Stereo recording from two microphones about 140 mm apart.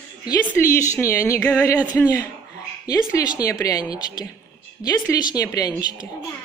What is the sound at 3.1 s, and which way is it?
A woman's voice, 25° left (ahead or behind).